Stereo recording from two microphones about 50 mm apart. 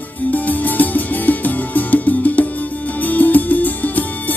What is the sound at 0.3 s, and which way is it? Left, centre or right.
Music, left.